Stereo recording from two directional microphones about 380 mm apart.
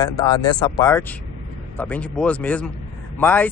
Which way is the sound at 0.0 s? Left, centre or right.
Centre.